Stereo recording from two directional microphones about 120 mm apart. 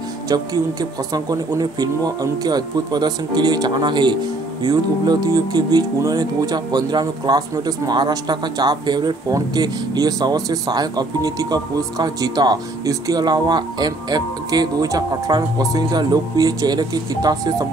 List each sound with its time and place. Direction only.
0.3 s speech: 30° right (ahead or behind)